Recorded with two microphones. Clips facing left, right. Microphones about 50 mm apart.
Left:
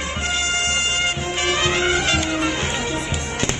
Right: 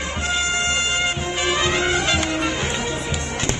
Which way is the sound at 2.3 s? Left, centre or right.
Centre.